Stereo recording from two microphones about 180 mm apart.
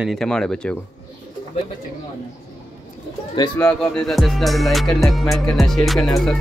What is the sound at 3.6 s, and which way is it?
Music, 5° left (ahead or behind).